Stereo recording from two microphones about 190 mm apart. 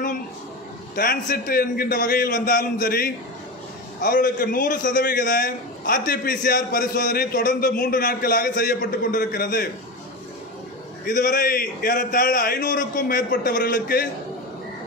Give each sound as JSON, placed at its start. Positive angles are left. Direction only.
{"t": 0.9, "sound": "a man's voice", "side_deg": 50}
{"t": 11.1, "sound": "a man's voice", "side_deg": 45}